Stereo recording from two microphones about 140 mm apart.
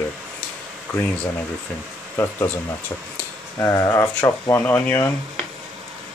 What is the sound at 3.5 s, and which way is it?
Speech, 20° left (ahead or behind).